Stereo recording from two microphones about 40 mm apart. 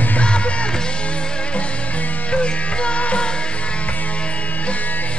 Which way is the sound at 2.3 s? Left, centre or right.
Left.